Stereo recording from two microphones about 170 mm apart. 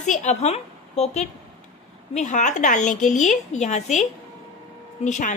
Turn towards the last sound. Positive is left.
turn(degrees=45)  # may be behind; listen again after turning